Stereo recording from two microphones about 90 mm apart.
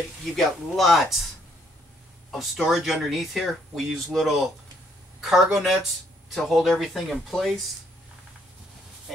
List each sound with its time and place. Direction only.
0.2 s speech: centre (ahead or behind)
2.3 s speech: 5° right (ahead or behind)